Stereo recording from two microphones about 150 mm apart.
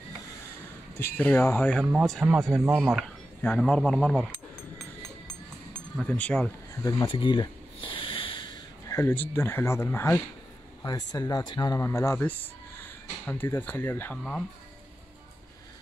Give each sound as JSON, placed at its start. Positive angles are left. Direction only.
{"t": 0.9, "sound": "speech", "side_deg": 15}
{"t": 1.9, "sound": "speech", "side_deg": 0}
{"t": 2.6, "sound": "speech", "side_deg": -15}
{"t": 3.4, "sound": "speech", "side_deg": 5}
{"t": 5.7, "sound": "speech", "side_deg": 5}
{"t": 6.7, "sound": "speech", "side_deg": 20}
{"t": 7.1, "sound": "wheeze", "side_deg": 35}
{"t": 8.9, "sound": "speech", "side_deg": 15}
{"t": 10.8, "sound": "speech", "side_deg": 25}